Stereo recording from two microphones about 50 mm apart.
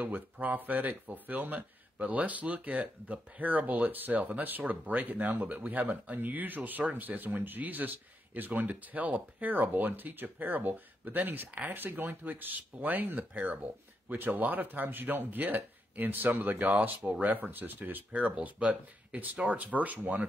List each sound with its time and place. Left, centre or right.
0.0 s speech: right